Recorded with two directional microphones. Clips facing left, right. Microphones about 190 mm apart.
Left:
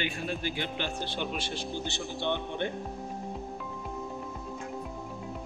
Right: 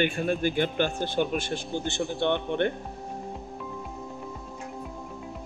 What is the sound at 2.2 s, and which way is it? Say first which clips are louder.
Speech: right 6 dB; 60° right (ahead or behind).